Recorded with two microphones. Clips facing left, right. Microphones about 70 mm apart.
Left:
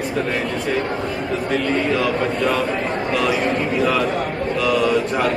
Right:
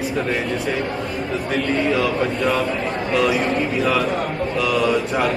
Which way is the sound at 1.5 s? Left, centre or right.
Centre.